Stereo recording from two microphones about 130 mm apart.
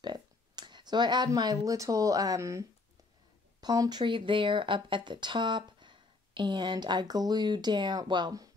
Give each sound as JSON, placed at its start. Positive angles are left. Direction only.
{"t": 0.0, "sound": "speech", "side_deg": -35}
{"t": 3.6, "sound": "speech", "side_deg": -30}